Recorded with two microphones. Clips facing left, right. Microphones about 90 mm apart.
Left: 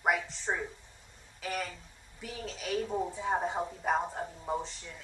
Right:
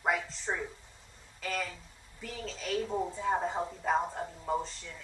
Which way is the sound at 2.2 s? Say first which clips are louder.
Even; 10° left (ahead or behind).